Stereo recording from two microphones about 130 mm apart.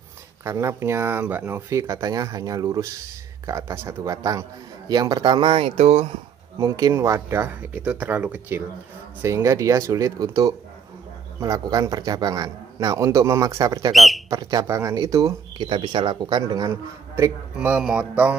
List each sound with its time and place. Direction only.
0.4 s a man's voice: 20° right (ahead or behind); by 6.1 s 55° right (ahead or behind)
6.6 s a man's voice: 25° right (ahead or behind)
13.9 s speech: centre (ahead or behind)
14.3 s a man's voice: 30° right (ahead or behind)
15.5 s speech: 40° right (ahead or behind)
17.6 s speech: 10° right (ahead or behind)